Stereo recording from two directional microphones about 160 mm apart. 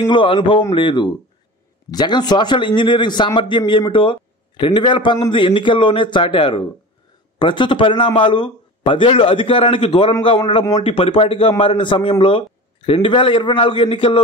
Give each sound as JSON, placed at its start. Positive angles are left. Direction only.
{"t": 0.0, "sound": "a man's voice", "side_deg": 30}